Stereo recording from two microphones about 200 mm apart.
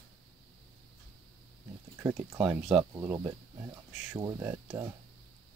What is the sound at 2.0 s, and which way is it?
Speech, 10° right (ahead or behind).